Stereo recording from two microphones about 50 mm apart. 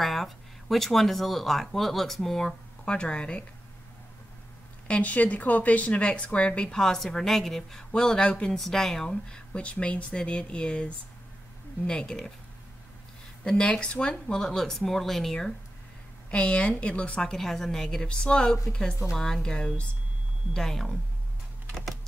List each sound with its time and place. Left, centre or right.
0.0 s speech: centre; by 3.4 s left
4.8 s speech: left
8.5 s speech: centre
13.5 s speech: centre
16.3 s speech: left
17.2 s speech: centre